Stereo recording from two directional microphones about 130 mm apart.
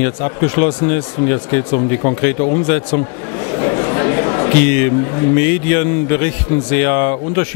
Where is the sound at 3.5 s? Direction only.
25° left (ahead or behind).